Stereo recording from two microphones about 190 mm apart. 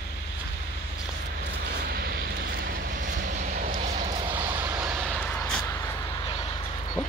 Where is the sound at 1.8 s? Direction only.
50° right (ahead or behind).